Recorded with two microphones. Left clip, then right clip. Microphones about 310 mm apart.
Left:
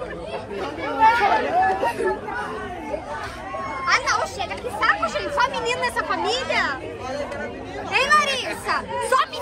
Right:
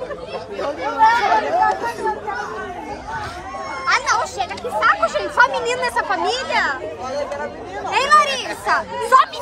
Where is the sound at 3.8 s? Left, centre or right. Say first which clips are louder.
Right 3 dB; right.